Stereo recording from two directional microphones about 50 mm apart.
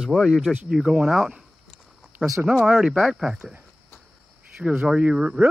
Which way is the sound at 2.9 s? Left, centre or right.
Centre.